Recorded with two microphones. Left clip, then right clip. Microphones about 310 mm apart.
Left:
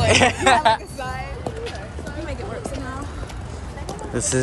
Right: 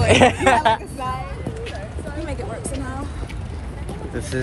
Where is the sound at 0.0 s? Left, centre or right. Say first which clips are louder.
Right 2 dB; centre.